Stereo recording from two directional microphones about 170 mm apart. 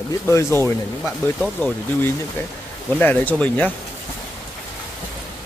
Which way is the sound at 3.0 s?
10° left (ahead or behind).